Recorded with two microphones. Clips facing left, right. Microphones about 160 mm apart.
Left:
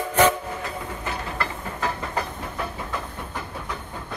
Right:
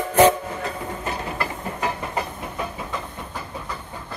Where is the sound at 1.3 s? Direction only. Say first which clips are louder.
Right 2 dB; 15° right (ahead or behind).